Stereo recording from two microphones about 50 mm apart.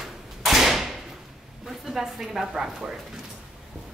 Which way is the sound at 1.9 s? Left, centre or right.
Centre.